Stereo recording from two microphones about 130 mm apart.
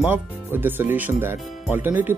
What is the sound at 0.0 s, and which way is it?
Speech, 15° right (ahead or behind).